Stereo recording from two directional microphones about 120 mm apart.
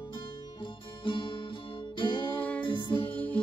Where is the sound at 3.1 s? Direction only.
15° left (ahead or behind).